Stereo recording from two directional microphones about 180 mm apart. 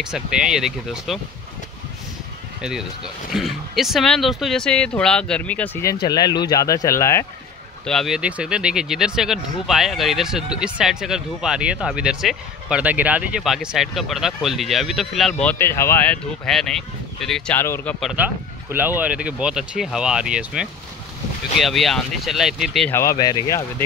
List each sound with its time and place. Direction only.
0.0 s speech: 5° right (ahead or behind)
2.6 s speech: 5° right (ahead or behind)
6.0 s speech: 20° left (ahead or behind)
7.8 s speech: centre (ahead or behind)
15.4 s speech: 10° left (ahead or behind)
18.0 s speech: 10° right (ahead or behind)
22.8 s speech: 15° left (ahead or behind)